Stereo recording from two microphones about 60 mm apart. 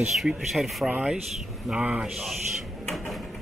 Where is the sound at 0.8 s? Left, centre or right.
Centre.